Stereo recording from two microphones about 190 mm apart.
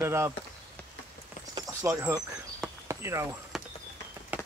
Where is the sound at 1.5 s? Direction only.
15° right (ahead or behind).